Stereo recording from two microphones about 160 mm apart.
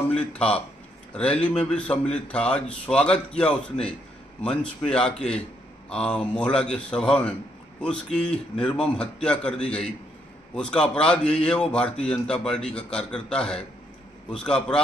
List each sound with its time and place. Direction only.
0.1 s a man's voice: 5° left (ahead or behind)